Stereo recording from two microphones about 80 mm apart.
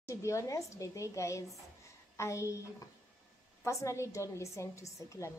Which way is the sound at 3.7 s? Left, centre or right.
Left.